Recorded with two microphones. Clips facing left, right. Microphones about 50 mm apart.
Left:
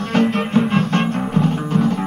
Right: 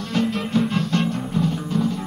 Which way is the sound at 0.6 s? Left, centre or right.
Left.